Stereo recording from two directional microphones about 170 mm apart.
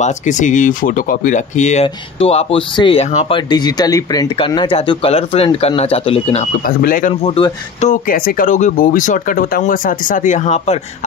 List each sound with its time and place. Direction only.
0.0 s speech: 45° left (ahead or behind)
3.3 s speech: 25° left (ahead or behind)
6.6 s speech: 55° left (ahead or behind)
7.2 s speech: 35° left (ahead or behind)
7.9 s speech: 55° left (ahead or behind); by 10.8 s 40° left (ahead or behind)